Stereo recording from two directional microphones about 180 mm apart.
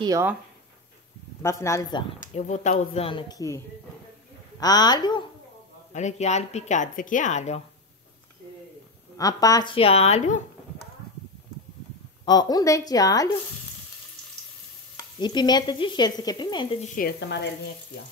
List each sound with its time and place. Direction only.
0.0 s speech: 20° right (ahead or behind)
1.4 s speech: 15° left (ahead or behind)
2.3 s a woman's voice: 40° left (ahead or behind); by 5.2 s 25° left (ahead or behind)
5.9 s a woman's voice: 40° left (ahead or behind)
9.1 s speech: 20° left (ahead or behind); by 10.9 s 40° left (ahead or behind)
12.3 s speech: 20° left (ahead or behind)
15.1 s speech: 25° left (ahead or behind)
16.8 s speech: 45° left (ahead or behind)